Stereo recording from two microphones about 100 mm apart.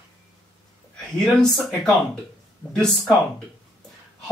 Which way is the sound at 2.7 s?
5° left (ahead or behind).